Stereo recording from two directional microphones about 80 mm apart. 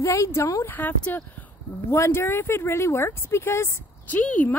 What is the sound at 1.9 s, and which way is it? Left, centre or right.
Speech, left.